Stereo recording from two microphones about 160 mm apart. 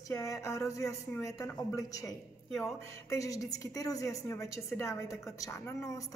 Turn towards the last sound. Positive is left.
turn(degrees=20)  # may be behind; listen again after turning